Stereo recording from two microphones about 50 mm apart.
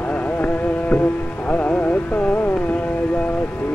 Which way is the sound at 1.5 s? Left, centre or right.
Left.